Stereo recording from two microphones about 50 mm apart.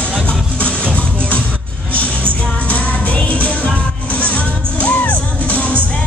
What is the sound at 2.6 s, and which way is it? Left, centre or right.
Music, left.